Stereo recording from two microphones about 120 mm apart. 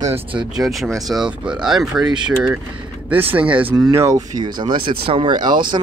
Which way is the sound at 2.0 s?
40° right (ahead or behind).